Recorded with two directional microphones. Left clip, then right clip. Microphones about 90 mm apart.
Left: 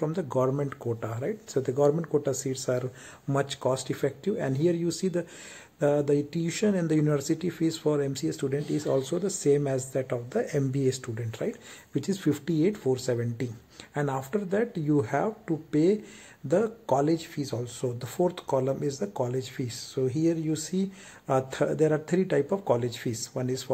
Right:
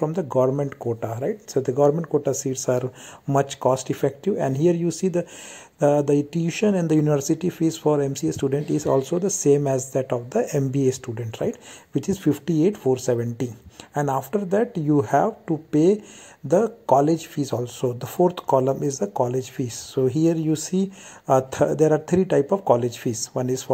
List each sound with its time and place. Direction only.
0.0 s speech: 30° right (ahead or behind)
17.4 s speech: 50° right (ahead or behind)
21.4 s speech: 35° right (ahead or behind)